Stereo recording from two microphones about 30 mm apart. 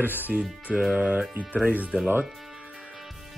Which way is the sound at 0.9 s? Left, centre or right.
Right.